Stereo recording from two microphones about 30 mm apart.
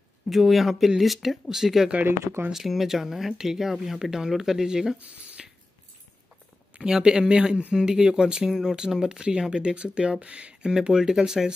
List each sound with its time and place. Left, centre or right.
0.3 s speech: centre
4.0 s speech: right
5.4 s a sound: centre
6.8 s speech: right
8.5 s speech: centre
8.7 s speech: right
10.2 s speech: right
10.6 s speech: right